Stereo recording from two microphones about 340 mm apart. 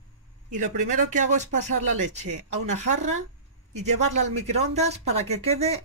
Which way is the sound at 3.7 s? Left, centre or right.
Centre.